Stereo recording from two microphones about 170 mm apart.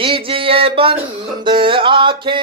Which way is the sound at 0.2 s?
35° right (ahead or behind).